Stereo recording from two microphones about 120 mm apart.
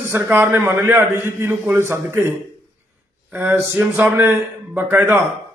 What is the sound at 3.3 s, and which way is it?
A man's voice, 20° right (ahead or behind).